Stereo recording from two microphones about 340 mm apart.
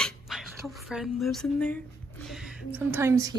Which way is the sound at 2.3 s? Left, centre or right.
Centre.